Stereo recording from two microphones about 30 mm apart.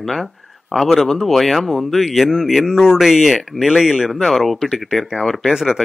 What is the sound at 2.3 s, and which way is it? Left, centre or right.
Speech, centre.